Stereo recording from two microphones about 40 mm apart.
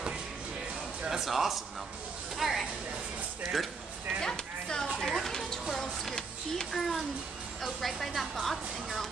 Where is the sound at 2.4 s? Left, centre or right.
Centre.